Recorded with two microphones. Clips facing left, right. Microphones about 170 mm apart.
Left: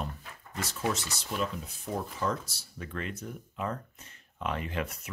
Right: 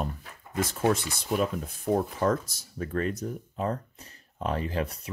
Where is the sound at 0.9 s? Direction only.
55° right (ahead or behind).